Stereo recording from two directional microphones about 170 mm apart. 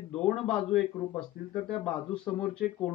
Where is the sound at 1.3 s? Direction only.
65° left (ahead or behind).